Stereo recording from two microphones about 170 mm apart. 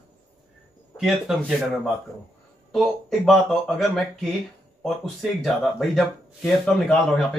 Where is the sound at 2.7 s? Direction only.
Centre (ahead or behind).